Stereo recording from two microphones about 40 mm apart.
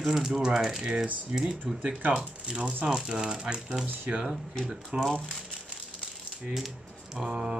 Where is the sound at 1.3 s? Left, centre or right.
Right.